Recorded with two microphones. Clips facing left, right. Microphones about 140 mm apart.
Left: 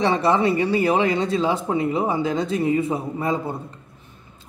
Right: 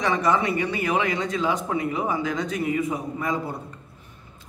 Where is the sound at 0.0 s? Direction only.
30° left (ahead or behind).